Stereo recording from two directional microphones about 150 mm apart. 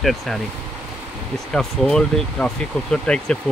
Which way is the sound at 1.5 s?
5° left (ahead or behind).